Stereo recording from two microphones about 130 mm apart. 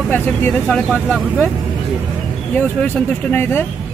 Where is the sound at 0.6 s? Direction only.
5° right (ahead or behind).